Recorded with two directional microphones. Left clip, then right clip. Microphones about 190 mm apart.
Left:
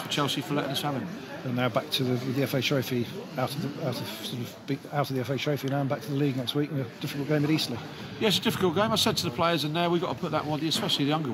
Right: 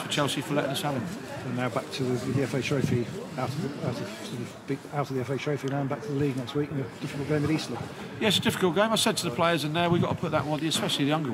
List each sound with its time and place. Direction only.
0.1 s speech: centre (ahead or behind)
1.6 s speech: 50° left (ahead or behind)
4.6 s speech: 45° left (ahead or behind)
7.3 s speech: 45° left (ahead or behind)
8.2 s speech: centre (ahead or behind)